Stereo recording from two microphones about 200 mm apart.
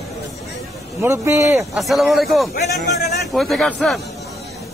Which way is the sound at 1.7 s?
Centre (ahead or behind).